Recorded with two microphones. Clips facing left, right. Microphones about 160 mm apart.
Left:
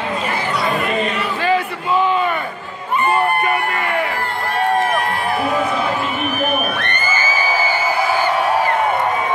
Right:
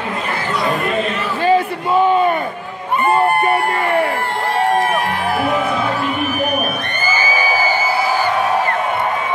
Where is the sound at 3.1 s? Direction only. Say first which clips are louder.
Right 5 dB; 35° right (ahead or behind).